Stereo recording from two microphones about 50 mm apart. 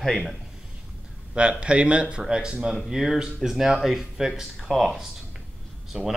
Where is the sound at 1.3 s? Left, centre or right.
Right.